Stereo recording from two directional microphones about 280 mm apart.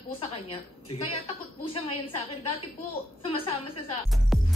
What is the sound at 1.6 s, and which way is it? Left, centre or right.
A woman's voice, centre.